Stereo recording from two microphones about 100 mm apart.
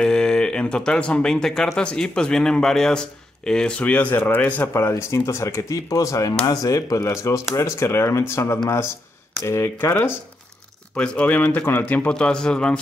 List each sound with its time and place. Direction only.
0.0 s speech: 10° left (ahead or behind); by 10.1 s 25° left (ahead or behind)
11.0 s speech: 15° left (ahead or behind)